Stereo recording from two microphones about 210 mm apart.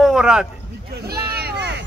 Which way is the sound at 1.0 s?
50° right (ahead or behind).